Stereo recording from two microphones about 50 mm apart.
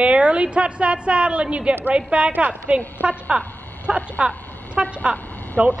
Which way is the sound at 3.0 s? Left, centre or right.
Centre.